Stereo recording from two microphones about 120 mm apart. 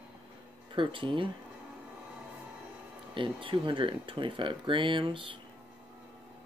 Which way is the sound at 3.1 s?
45° right (ahead or behind).